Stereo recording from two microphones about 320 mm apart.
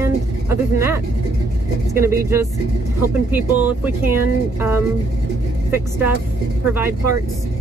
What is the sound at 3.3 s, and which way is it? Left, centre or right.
Speech, centre.